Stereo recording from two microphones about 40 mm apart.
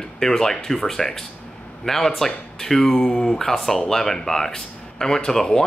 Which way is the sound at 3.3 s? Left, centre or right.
Centre.